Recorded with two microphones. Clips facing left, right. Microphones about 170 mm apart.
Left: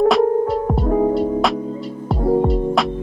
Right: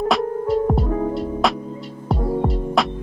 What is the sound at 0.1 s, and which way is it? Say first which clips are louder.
Music: left 4 dB; centre (ahead or behind).